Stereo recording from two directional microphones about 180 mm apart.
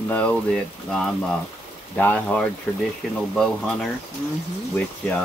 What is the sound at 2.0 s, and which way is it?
Speech, 10° left (ahead or behind).